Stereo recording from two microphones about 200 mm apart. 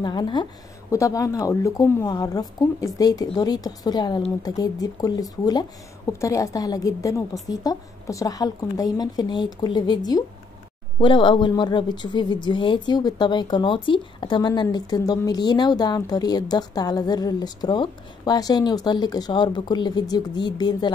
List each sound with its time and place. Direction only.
0.0 s speech: 20° left (ahead or behind)